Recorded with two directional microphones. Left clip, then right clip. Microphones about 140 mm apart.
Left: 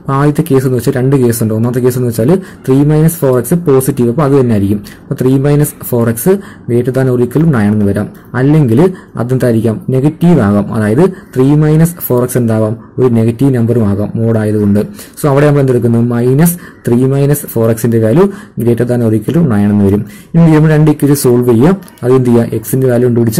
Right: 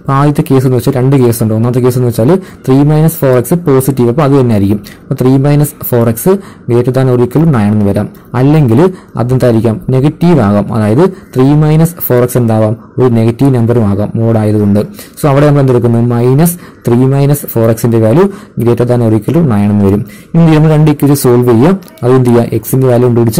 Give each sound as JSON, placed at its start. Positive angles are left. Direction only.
{"t": 0.0, "sound": "speech", "side_deg": -25}
{"t": 20.9, "sound": "speech", "side_deg": -25}